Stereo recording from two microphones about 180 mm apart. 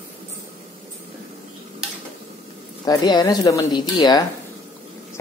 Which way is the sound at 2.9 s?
20° left (ahead or behind).